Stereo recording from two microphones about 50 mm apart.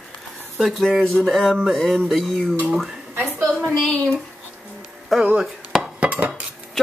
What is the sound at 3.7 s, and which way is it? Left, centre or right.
Speech, centre.